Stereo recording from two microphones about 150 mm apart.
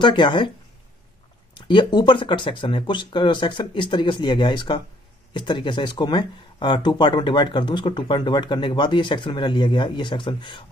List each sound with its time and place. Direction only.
0.0 s speech: 30° left (ahead or behind)
1.5 s speech: 30° left (ahead or behind)